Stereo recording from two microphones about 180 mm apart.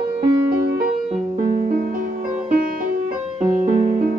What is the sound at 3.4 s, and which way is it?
Music, 35° right (ahead or behind).